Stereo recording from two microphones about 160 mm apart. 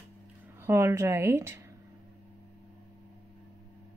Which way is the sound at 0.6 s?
15° right (ahead or behind).